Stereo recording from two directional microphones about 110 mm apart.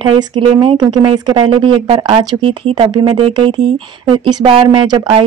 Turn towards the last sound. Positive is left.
turn(degrees=-50)  # may be behind; listen again after turning